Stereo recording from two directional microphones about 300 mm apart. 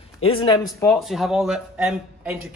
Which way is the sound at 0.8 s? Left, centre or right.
Centre.